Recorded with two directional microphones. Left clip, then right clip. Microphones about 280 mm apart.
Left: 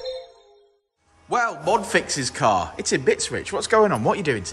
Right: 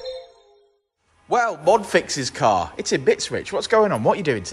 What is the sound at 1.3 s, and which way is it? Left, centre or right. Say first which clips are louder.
A man's voice: right 3 dB; centre.